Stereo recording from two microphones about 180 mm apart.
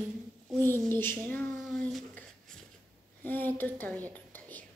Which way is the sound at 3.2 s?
10° left (ahead or behind).